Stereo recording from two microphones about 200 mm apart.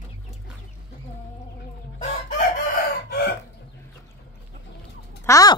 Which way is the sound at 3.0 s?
50° left (ahead or behind).